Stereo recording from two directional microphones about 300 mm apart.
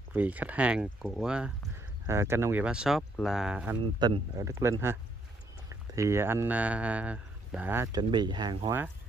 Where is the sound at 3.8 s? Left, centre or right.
Centre.